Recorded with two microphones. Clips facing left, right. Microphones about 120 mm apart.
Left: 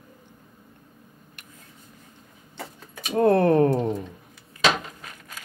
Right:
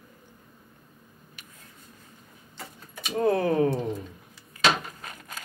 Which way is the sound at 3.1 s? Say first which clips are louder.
Left 5 dB; 60° left (ahead or behind).